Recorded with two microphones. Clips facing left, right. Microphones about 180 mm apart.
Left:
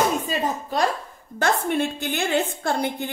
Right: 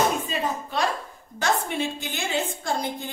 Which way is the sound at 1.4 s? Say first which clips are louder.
Left 3 dB; 55° left (ahead or behind).